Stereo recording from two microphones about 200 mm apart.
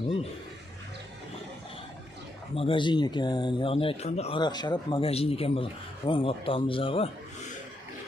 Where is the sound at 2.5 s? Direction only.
25° left (ahead or behind).